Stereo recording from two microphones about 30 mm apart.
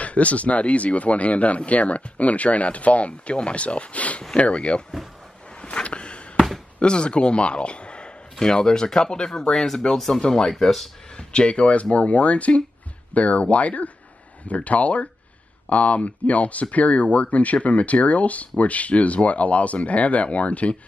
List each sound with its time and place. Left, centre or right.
0.0 s speech: left
5.6 s a sound: left
6.8 s speech: left
8.4 s speech: left
9.5 s speech: centre
11.1 s speech: left